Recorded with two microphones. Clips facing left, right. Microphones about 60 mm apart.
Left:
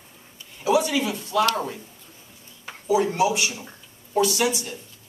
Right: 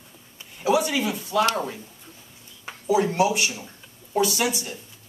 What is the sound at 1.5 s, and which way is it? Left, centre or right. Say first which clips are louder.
Speech: even; centre.